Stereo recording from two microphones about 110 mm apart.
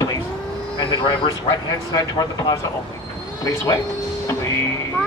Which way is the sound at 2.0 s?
35° left (ahead or behind).